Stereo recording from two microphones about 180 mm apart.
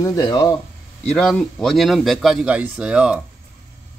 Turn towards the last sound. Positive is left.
turn(degrees=-5)  # may be behind; listen again after turning